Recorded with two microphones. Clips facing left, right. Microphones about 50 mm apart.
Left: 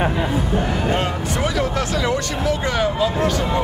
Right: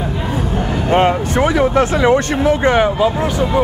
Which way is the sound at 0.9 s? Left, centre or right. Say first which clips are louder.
Right 9 dB; right.